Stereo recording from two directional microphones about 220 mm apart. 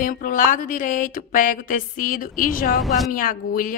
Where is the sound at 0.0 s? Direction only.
40° left (ahead or behind).